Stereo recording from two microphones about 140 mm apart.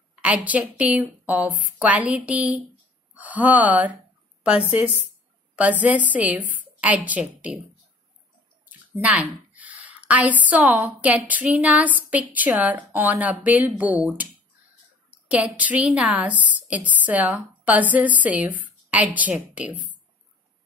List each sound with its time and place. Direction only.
0.1 s a woman's voice: 10° right (ahead or behind)
8.9 s a woman's voice: 10° right (ahead or behind)